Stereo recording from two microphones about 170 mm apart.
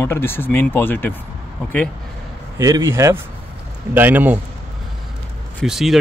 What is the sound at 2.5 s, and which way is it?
A man's voice, 20° right (ahead or behind).